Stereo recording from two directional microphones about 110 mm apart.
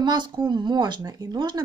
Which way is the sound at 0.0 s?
40° right (ahead or behind).